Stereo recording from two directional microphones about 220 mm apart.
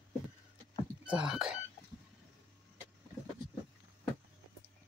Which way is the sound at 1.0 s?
5° right (ahead or behind).